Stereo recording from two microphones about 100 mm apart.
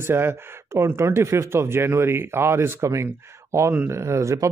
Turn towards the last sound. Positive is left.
turn(degrees=-30)  # may be behind; listen again after turning